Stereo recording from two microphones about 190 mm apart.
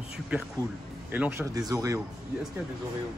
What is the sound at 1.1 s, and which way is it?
Speech, 10° right (ahead or behind).